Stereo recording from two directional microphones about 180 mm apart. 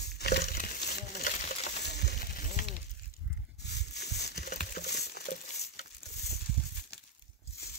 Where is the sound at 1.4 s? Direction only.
40° left (ahead or behind).